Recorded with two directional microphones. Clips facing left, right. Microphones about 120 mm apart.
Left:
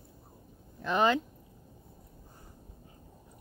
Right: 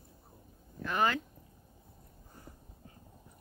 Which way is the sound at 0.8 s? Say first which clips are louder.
Left 4 dB; 20° left (ahead or behind).